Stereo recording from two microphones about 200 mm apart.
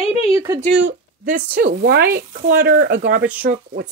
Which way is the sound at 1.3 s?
50° right (ahead or behind).